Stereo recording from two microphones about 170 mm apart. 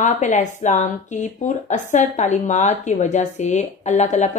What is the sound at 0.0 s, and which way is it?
Speech, 45° left (ahead or behind).